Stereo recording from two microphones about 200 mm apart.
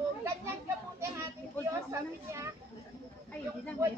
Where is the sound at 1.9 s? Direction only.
15° right (ahead or behind).